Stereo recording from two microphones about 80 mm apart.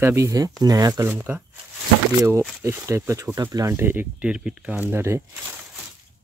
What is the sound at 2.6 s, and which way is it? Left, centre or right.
Speech, right.